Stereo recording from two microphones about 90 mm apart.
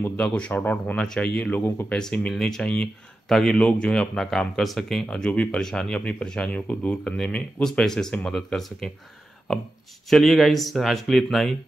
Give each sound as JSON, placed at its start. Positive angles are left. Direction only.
{"t": 0.0, "sound": "speech", "side_deg": 20}
{"t": 10.0, "sound": "speech", "side_deg": 0}